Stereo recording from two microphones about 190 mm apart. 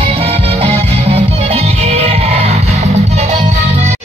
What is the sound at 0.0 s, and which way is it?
Music, 30° right (ahead or behind).